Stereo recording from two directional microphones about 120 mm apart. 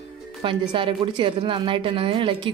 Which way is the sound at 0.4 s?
45° right (ahead or behind).